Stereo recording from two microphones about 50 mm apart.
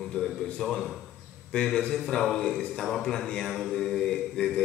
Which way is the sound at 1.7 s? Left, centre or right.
Left.